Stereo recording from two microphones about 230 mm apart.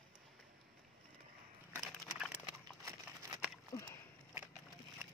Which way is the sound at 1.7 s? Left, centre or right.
Centre.